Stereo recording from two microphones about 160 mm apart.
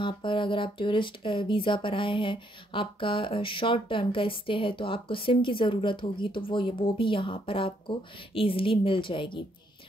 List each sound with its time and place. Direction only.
0.0 s speech: 30° left (ahead or behind)